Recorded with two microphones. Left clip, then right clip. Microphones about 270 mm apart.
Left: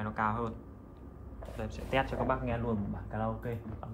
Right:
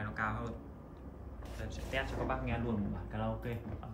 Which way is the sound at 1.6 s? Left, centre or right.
Centre.